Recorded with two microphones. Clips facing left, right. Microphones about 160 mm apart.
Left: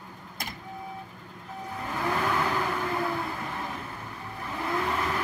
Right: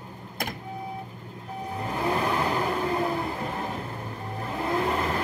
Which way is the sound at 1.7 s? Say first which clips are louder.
Right 3 dB; 25° right (ahead or behind).